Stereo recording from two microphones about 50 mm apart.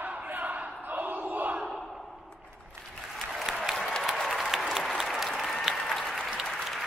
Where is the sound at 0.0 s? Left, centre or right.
Right.